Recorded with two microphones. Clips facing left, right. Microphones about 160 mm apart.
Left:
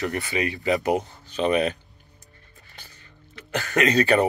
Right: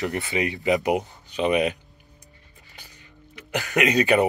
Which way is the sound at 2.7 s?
15° right (ahead or behind).